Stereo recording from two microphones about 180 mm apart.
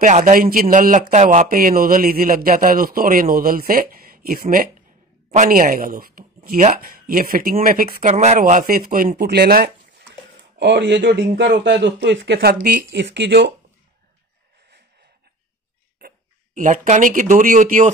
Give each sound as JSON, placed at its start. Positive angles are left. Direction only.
{"t": 0.0, "sound": "a man's voice", "side_deg": -45}
{"t": 8.1, "sound": "a man's voice", "side_deg": -40}
{"t": 10.6, "sound": "a man's voice", "side_deg": -75}
{"t": 12.9, "sound": "a man's voice", "side_deg": -75}
{"t": 16.0, "sound": "a sound", "side_deg": -60}
{"t": 16.5, "sound": "a man's voice", "side_deg": -45}